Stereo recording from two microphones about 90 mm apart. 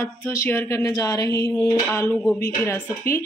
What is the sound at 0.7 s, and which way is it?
A woman's voice, 40° left (ahead or behind).